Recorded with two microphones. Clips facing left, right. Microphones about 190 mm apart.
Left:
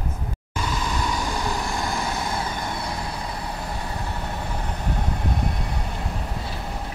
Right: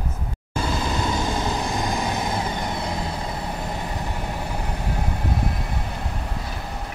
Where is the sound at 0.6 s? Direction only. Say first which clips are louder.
Right 2 dB; 30° right (ahead or behind).